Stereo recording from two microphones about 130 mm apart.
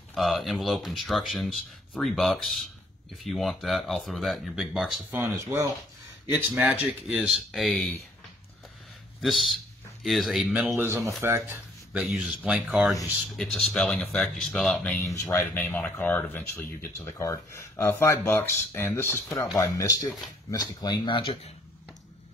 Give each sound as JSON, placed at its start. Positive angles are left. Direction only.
{"t": 0.1, "sound": "speech", "side_deg": 0}
{"t": 5.1, "sound": "speech", "side_deg": -15}
{"t": 6.5, "sound": "speech", "side_deg": -10}
{"t": 9.2, "sound": "speech", "side_deg": 0}
{"t": 13.4, "sound": "speech", "side_deg": 10}
{"t": 15.0, "sound": "speech", "side_deg": 20}